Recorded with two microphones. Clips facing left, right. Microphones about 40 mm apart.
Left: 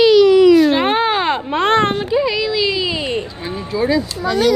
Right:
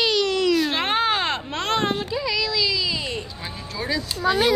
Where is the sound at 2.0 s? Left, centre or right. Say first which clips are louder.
Left 8 dB; left.